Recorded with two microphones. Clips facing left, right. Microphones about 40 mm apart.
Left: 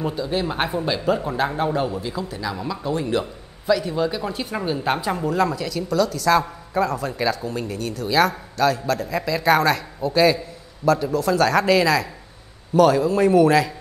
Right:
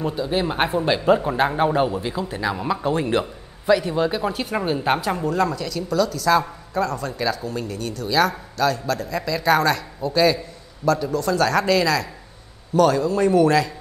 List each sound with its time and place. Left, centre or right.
0.1 s speech: centre
5.0 s a woman's voice: centre